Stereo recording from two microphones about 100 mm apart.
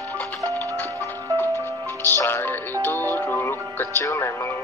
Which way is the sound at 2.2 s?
25° left (ahead or behind).